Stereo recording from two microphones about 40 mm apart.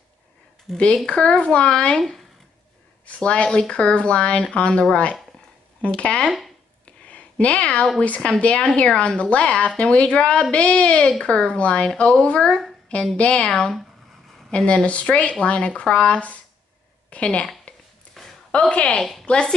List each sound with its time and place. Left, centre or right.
0.7 s speech: centre
1.0 s speech: left
3.1 s speech: left
7.1 s a sound: left
8.2 s speech: left
13.5 s speech: centre
17.7 s a sound: left
18.2 s a sound: centre
18.7 s speech: left
18.9 s speech: centre
19.2 s speech: left